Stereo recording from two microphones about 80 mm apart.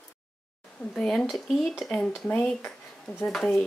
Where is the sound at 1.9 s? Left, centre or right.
Centre.